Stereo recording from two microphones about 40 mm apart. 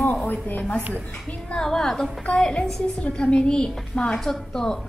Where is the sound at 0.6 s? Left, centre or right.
Left.